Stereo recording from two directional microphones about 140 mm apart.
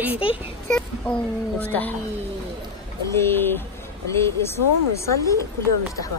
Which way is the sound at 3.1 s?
15° left (ahead or behind).